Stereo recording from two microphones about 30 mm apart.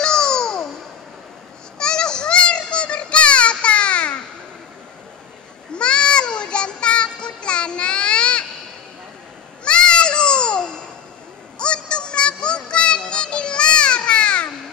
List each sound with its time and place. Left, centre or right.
0.0 s babbling: left
1.8 s child singing: left
5.7 s child singing: left
9.7 s babbling: left
11.5 s music: left